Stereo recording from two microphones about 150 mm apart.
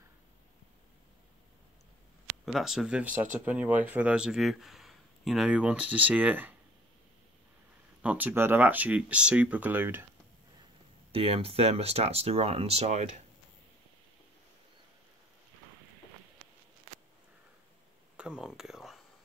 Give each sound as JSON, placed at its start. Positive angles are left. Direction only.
{"t": 2.4, "sound": "speech", "side_deg": 0}
{"t": 8.0, "sound": "speech", "side_deg": -10}
{"t": 11.1, "sound": "speech", "side_deg": -40}
{"t": 18.1, "sound": "a sound", "side_deg": -5}